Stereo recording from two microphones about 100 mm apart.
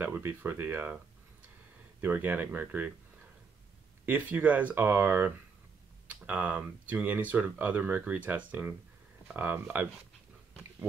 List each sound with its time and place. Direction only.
0.0 s speech: 20° right (ahead or behind)
2.0 s speech: 15° right (ahead or behind)
4.0 s speech: 15° right (ahead or behind)